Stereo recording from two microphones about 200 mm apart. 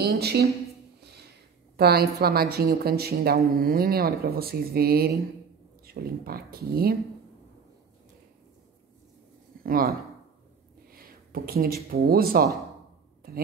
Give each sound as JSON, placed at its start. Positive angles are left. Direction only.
{"t": 0.2, "sound": "a woman's voice", "side_deg": -55}
{"t": 1.8, "sound": "a woman's voice", "side_deg": -55}
{"t": 9.6, "sound": "speech", "side_deg": -45}